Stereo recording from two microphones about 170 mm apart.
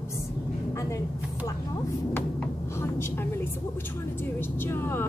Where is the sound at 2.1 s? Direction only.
10° left (ahead or behind).